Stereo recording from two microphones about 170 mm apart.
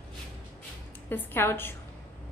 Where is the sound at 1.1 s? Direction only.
15° left (ahead or behind).